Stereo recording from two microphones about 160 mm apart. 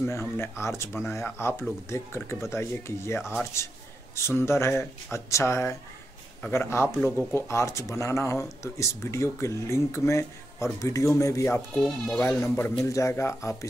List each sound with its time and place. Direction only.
0.0 s speech: 15° left (ahead or behind)
11.7 s speech: 5° left (ahead or behind)